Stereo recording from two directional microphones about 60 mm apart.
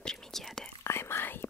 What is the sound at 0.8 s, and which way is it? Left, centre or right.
Whispering, left.